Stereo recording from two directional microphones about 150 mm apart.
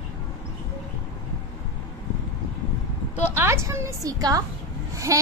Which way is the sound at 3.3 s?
20° right (ahead or behind).